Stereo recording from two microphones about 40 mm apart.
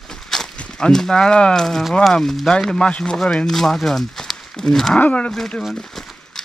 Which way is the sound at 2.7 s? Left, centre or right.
Left.